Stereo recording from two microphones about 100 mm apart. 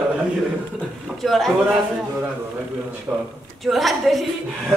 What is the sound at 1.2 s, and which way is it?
Speech, centre (ahead or behind).